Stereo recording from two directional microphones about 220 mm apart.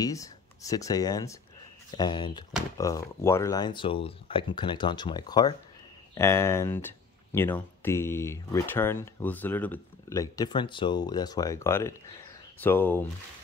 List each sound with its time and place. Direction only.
0.0 s speech: 15° left (ahead or behind)